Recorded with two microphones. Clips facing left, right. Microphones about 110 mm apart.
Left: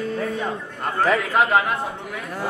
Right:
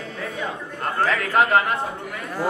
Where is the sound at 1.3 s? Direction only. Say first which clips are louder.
Even; centre (ahead or behind).